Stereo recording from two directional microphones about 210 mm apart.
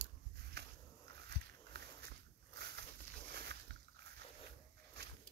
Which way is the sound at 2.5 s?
50° right (ahead or behind).